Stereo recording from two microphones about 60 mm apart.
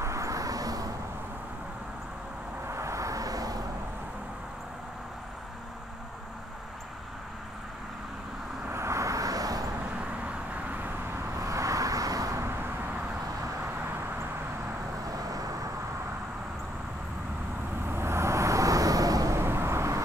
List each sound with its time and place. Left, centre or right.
0.0 s vehicle: right
2.7 s vehicle: right
8.7 s vehicle: right
9.9 s vehicle: right
11.3 s vehicle: right
12.4 s vehicle: right
15.0 s vehicle: right
17.8 s vehicle: right
19.3 s vehicle: right